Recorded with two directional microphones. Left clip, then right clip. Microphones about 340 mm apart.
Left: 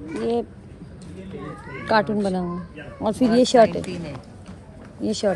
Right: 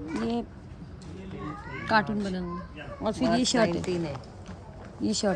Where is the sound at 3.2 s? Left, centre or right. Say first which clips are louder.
Left 10 dB; centre.